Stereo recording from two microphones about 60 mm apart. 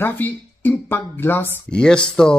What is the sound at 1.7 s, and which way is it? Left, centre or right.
Speech, centre.